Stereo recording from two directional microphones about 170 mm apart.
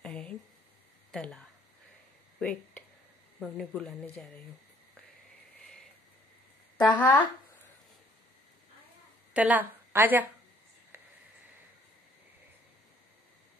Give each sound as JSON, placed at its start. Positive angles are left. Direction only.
{"t": 0.0, "sound": "a sound", "side_deg": 5}
{"t": 1.1, "sound": "speech", "side_deg": 5}
{"t": 3.3, "sound": "speech", "side_deg": 5}
{"t": 6.8, "sound": "speech", "side_deg": 25}
{"t": 9.3, "sound": "a woman's voice", "side_deg": -10}
{"t": 10.9, "sound": "cricket", "side_deg": -10}